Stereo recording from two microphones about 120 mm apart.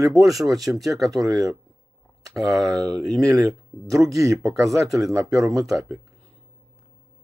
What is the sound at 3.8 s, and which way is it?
Speech, 30° right (ahead or behind).